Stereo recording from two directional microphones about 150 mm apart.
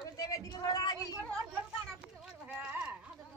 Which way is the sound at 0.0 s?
25° left (ahead or behind).